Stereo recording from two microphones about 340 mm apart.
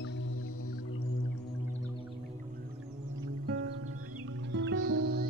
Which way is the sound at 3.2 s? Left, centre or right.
Right.